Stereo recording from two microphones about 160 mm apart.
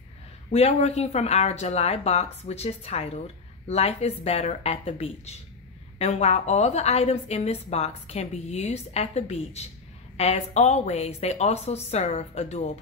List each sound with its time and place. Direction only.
0.5 s a woman's voice: 40° left (ahead or behind)